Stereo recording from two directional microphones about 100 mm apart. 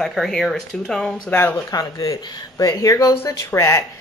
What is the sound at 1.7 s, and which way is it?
Speech, 40° left (ahead or behind).